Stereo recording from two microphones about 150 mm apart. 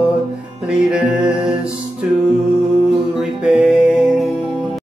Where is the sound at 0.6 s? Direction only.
5° right (ahead or behind).